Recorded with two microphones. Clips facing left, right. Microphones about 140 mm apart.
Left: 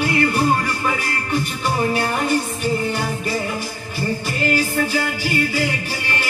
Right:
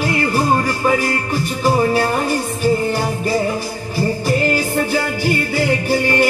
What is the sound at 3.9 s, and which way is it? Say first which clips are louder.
Music: right 6 dB; 45° right (ahead or behind).